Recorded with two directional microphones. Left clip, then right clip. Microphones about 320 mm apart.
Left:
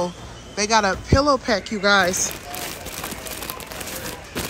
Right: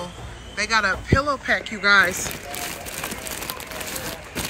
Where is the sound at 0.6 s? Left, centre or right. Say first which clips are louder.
Left 2 dB; centre.